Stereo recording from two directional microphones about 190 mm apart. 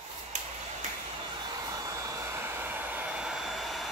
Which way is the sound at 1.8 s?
15° right (ahead or behind).